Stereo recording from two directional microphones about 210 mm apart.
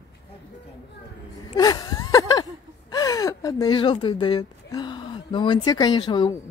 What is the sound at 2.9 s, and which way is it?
Speech, 15° left (ahead or behind).